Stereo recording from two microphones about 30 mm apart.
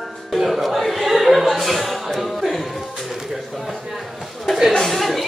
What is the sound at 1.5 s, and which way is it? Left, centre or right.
Speech, centre.